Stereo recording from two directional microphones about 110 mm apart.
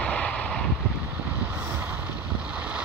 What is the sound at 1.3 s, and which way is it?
Boat, 20° right (ahead or behind).